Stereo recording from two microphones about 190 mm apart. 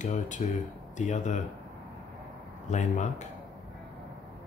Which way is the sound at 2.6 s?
40° left (ahead or behind).